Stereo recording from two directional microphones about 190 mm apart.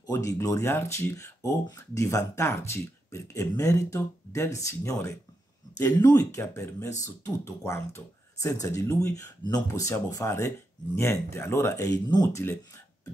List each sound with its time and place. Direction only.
0.1 s speech: 20° left (ahead or behind)